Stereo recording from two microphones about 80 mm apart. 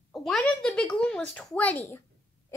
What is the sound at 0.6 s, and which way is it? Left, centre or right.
Speech, centre.